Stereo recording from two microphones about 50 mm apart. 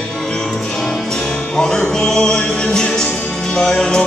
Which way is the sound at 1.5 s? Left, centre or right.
Centre.